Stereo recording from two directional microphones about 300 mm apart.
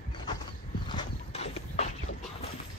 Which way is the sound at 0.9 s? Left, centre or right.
Centre.